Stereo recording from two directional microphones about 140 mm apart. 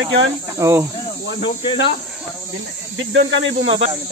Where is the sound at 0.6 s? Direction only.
20° right (ahead or behind).